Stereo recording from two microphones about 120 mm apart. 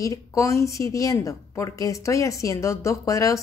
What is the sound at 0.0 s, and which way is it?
A woman's voice, 30° left (ahead or behind).